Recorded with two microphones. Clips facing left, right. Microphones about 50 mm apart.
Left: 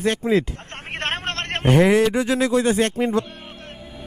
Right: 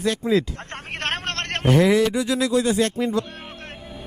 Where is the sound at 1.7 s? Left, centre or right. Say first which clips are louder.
Left 2 dB; left.